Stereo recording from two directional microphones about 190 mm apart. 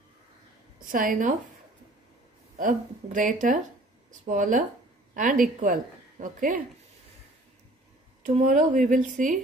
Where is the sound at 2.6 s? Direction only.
45° right (ahead or behind).